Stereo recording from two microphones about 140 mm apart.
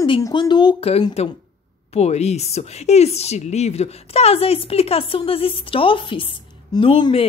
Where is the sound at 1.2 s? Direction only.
45° left (ahead or behind).